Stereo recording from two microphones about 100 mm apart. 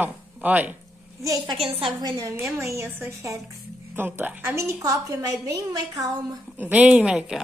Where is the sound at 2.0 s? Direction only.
35° right (ahead or behind).